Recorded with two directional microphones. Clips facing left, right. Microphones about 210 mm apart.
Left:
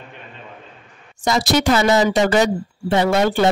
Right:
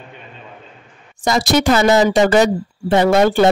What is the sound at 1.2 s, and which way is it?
Speech, 45° right (ahead or behind).